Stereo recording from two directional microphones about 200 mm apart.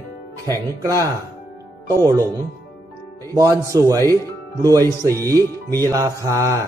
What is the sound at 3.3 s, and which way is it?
Mantra, 15° right (ahead or behind).